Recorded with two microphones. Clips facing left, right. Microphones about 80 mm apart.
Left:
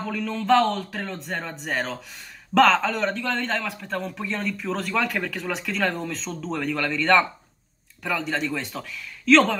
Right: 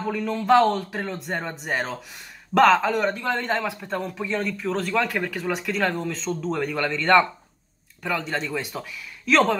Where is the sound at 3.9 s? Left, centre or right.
Centre.